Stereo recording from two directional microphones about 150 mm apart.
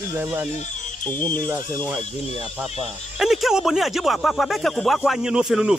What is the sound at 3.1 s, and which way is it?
Speech, centre (ahead or behind).